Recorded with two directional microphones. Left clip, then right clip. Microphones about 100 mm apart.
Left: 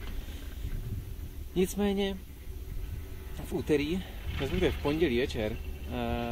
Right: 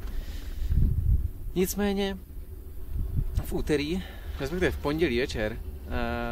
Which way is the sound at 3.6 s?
15° right (ahead or behind).